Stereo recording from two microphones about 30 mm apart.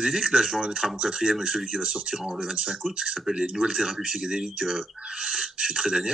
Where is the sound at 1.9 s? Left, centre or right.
Right.